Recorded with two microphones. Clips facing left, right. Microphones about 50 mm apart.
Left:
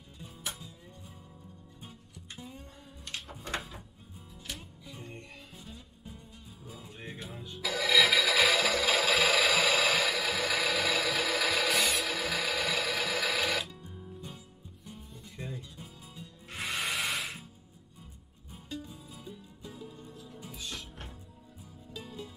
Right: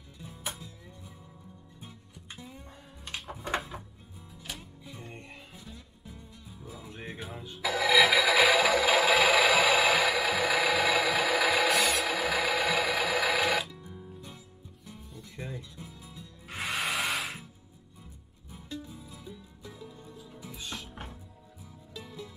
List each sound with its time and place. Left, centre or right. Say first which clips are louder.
1.8 s music: even; centre
3.2 s a sound: right 5 dB; centre
4.3 s music: right 1 dB; centre
5.0 s music: right 1 dB; centre
6.1 s music: right 2 dB; right
6.8 s music: right 3 dB; centre
15.3 s music: right 1 dB; right
16.4 s music: right 2 dB; centre
19.1 s music: even; right
20.9 s music: right 3 dB; centre